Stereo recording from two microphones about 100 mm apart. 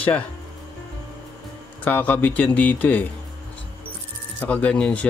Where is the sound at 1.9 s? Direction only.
15° left (ahead or behind).